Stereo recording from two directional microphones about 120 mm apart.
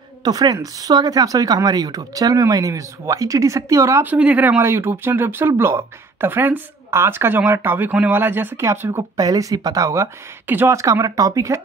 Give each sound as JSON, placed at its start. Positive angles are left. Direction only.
{"t": 0.2, "sound": "speech", "side_deg": -35}